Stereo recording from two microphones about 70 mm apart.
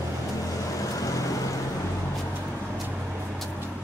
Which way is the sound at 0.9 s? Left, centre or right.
Left.